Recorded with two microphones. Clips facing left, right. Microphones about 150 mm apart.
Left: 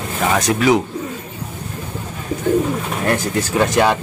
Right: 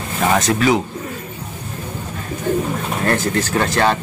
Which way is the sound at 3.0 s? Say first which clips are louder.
Right 1 dB; 10° left (ahead or behind).